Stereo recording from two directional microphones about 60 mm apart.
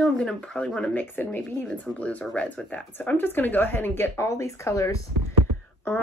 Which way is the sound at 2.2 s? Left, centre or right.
Centre.